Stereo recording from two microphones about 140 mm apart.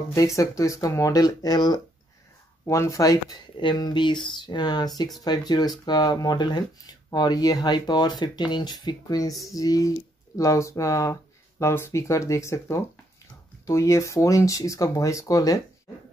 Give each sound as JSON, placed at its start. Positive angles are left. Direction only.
{"t": 0.1, "sound": "speech", "side_deg": 25}